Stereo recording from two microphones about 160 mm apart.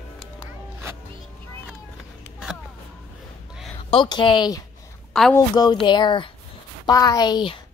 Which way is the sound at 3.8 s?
35° left (ahead or behind).